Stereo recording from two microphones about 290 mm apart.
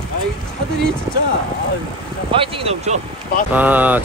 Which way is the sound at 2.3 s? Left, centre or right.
Centre.